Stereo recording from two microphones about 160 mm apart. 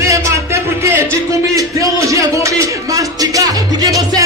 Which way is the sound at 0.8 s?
15° right (ahead or behind).